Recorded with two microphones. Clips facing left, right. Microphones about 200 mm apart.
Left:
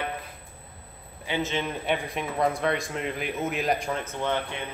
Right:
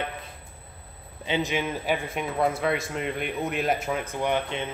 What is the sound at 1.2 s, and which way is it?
Speech, 15° right (ahead or behind).